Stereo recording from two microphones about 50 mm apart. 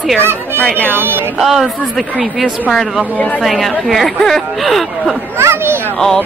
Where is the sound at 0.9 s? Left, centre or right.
Right.